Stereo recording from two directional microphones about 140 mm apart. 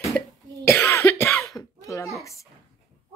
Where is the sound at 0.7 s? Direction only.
15° left (ahead or behind).